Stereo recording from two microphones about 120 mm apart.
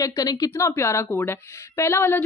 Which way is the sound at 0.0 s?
30° left (ahead or behind).